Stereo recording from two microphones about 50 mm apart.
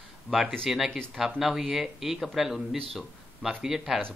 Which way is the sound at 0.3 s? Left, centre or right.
Left.